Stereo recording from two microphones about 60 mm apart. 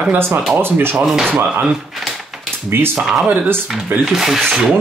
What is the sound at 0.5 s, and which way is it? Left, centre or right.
Speech, right.